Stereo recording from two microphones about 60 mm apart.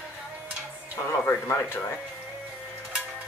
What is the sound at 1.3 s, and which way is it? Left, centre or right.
Speech, left.